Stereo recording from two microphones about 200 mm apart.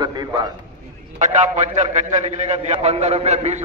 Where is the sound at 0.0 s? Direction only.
20° right (ahead or behind).